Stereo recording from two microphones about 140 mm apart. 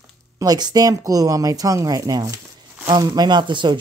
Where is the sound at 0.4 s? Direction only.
30° right (ahead or behind).